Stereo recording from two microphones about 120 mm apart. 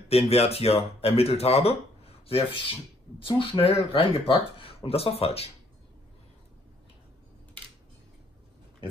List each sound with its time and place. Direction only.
0.1 s speech: 55° left (ahead or behind)